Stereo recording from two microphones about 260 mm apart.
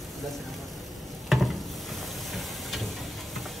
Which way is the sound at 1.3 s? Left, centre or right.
Centre.